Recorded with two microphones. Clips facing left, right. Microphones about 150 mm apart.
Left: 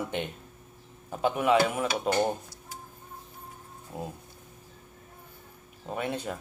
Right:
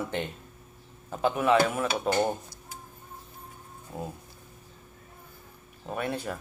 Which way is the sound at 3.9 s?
15° left (ahead or behind).